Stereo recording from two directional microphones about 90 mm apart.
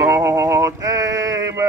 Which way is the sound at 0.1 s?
35° right (ahead or behind).